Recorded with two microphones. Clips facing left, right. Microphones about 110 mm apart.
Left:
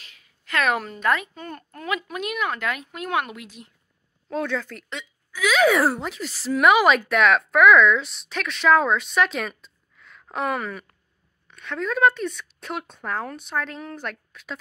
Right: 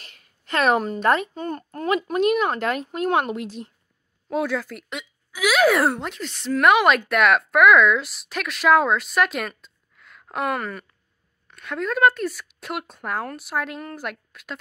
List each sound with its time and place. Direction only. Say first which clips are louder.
0.5 s a woman's voice: right 4 dB; 30° right (ahead or behind)
4.3 s speech: right 2 dB; 10° right (ahead or behind)